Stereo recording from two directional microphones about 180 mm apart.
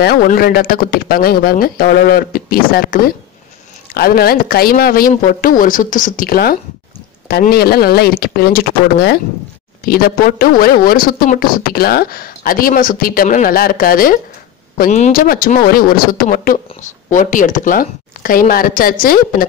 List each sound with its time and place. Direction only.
0.0 s speech: 55° left (ahead or behind)